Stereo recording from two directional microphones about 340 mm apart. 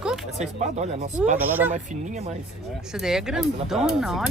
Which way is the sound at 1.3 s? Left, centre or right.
Centre.